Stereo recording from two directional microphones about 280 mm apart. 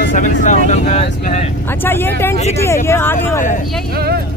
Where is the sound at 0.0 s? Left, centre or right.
Left.